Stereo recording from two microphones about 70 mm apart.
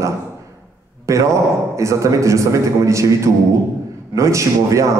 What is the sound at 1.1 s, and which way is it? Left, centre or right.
A man's voice, right.